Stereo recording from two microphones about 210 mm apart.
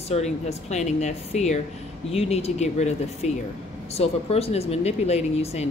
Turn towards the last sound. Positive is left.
turn(degrees=30)  # may be behind; listen again after turning